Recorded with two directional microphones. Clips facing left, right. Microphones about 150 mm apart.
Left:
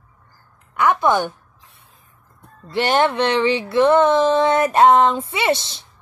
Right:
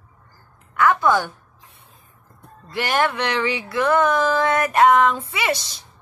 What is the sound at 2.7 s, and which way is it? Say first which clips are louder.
Speech: left 4 dB; 25° left (ahead or behind).